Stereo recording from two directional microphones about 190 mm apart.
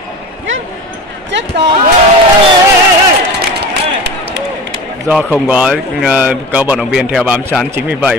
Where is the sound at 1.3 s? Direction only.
65° right (ahead or behind).